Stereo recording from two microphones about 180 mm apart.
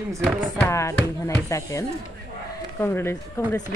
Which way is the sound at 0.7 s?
15° left (ahead or behind).